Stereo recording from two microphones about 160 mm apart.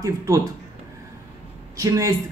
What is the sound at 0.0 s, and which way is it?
Speech, 20° right (ahead or behind).